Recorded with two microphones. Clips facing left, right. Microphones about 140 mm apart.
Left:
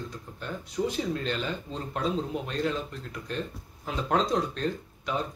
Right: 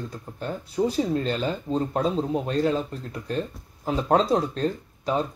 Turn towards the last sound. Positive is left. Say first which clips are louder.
# right 6 dB
turn(degrees=-35)  # may be behind; listen again after turning